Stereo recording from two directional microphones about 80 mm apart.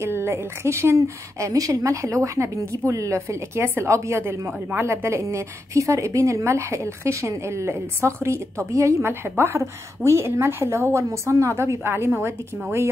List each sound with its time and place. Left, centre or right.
0.0 s a woman's voice: right